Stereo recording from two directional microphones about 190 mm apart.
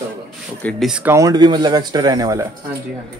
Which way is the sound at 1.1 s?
20° right (ahead or behind).